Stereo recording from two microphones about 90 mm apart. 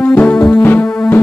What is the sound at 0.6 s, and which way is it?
Music, 20° left (ahead or behind).